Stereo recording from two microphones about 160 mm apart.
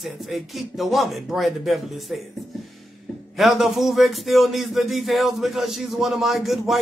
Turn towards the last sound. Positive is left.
turn(degrees=0)  # may be behind; listen again after turning